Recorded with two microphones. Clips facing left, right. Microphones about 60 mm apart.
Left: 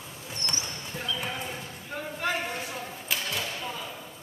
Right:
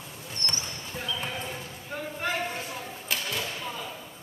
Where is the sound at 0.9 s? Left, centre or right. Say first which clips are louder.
Even; centre.